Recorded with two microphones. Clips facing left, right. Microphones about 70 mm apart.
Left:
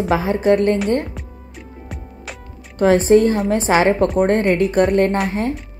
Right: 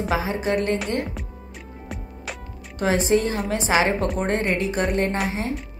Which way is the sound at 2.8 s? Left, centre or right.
Left.